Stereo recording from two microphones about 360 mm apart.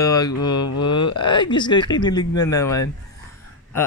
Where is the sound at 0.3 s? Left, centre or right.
Left.